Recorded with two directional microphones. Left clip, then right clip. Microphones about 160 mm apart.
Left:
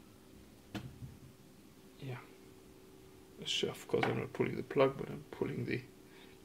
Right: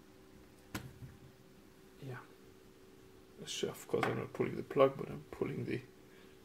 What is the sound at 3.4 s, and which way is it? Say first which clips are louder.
Speech: left 4 dB; centre (ahead or behind).